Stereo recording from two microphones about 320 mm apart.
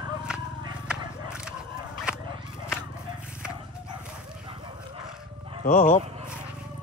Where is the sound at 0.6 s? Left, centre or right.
Centre.